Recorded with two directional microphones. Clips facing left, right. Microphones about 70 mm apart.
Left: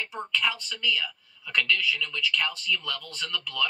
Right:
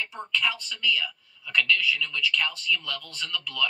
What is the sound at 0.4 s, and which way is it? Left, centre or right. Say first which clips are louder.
Speech: right 1 dB; left.